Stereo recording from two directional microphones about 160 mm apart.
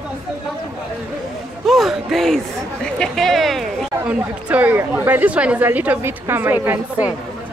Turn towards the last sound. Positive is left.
turn(degrees=-10)  # may be behind; listen again after turning